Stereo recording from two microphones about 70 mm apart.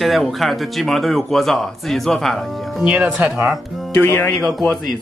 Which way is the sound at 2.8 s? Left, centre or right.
Centre.